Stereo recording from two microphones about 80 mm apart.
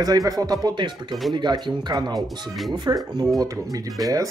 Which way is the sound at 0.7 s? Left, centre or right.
Right.